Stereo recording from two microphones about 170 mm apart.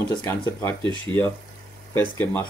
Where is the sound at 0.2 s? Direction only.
15° left (ahead or behind).